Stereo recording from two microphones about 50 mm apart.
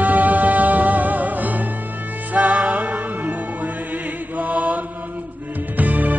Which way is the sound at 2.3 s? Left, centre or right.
Right.